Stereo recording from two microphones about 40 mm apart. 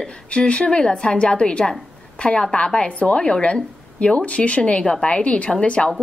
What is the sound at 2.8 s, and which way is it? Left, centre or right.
A woman's voice, left.